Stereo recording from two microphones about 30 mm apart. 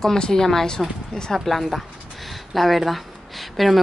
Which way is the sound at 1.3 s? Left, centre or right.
Centre.